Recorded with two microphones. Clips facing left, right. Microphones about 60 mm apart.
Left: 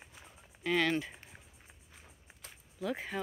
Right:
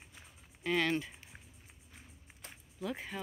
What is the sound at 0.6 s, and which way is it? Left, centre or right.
Speech, centre.